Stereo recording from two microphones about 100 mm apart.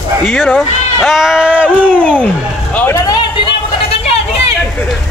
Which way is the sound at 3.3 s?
70° left (ahead or behind).